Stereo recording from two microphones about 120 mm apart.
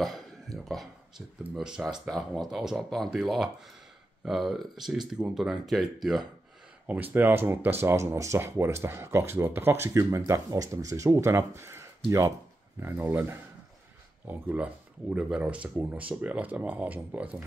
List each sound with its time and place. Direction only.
0.0 s a sound: centre (ahead or behind)
1.4 s speech: 5° right (ahead or behind)
6.9 s speech: 15° right (ahead or behind)